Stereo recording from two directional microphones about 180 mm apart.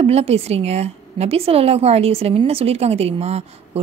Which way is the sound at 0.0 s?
35° right (ahead or behind).